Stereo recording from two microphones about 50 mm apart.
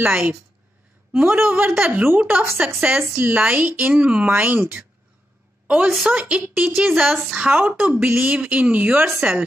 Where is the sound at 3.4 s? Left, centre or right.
Right.